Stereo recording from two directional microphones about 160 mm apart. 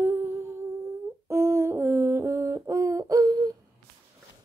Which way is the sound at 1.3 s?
15° right (ahead or behind).